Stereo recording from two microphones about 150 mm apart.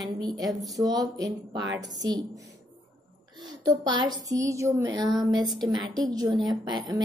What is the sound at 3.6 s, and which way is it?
A woman's voice, 30° right (ahead or behind).